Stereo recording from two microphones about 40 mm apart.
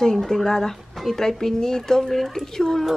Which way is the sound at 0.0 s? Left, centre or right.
Centre.